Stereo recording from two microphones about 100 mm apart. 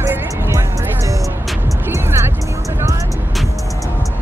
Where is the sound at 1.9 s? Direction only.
25° right (ahead or behind).